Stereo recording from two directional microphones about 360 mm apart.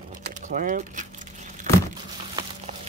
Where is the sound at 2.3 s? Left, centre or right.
Centre.